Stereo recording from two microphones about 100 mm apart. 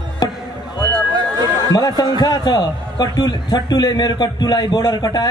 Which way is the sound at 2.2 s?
45° left (ahead or behind).